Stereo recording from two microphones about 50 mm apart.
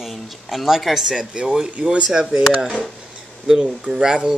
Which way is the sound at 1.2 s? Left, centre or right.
Centre.